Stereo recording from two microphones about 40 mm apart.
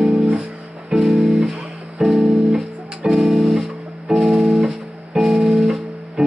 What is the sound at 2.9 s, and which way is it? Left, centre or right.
Music, centre.